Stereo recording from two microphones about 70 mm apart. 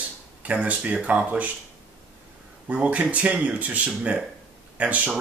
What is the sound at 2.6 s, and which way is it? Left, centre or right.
Speech, right.